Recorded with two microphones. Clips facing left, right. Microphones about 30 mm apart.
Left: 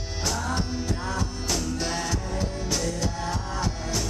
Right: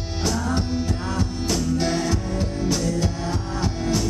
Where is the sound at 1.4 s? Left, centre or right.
Centre.